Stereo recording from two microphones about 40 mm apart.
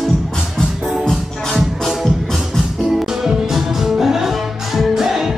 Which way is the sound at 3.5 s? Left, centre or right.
Centre.